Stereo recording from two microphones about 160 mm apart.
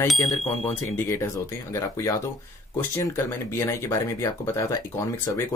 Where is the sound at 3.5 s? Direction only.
15° left (ahead or behind).